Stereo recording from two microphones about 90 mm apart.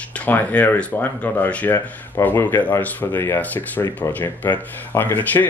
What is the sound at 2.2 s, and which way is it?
Speech, 30° left (ahead or behind).